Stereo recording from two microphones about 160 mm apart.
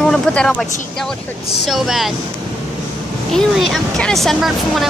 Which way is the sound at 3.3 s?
Centre (ahead or behind).